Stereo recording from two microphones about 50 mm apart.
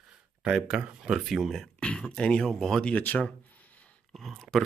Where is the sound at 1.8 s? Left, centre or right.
Centre.